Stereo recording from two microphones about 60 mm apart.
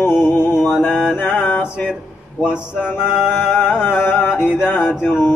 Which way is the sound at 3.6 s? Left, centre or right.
Left.